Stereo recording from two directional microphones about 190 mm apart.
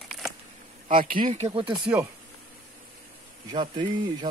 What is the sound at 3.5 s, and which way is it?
Speech, 25° right (ahead or behind).